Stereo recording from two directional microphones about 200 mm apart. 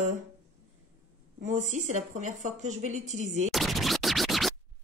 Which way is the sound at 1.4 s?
40° right (ahead or behind).